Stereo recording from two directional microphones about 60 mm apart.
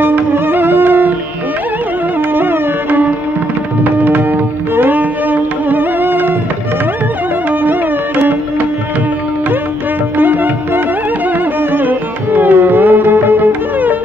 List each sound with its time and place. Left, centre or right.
0.0 s music: right
2.3 s music: right
4.7 s music: right
10.1 s music: right